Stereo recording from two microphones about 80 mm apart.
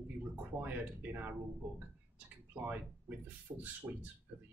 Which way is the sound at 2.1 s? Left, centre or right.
Right.